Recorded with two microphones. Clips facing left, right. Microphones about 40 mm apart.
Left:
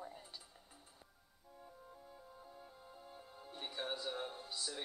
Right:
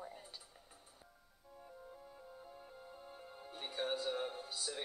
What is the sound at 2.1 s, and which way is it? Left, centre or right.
Music, centre.